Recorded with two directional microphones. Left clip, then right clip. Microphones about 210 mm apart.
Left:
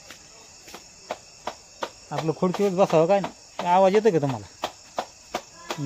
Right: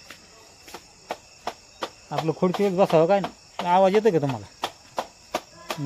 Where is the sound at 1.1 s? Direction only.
45° right (ahead or behind).